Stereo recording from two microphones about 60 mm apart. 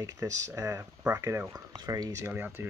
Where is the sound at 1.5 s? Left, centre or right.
Right.